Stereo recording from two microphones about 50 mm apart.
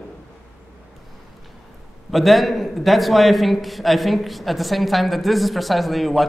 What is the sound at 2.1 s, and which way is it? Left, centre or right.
A man's voice, centre.